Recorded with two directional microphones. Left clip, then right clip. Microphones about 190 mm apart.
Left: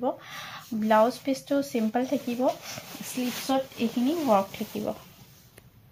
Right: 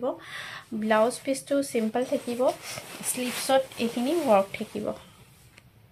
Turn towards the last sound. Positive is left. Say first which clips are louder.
# right 1 dB
turn(degrees=-15)  # may be behind; listen again after turning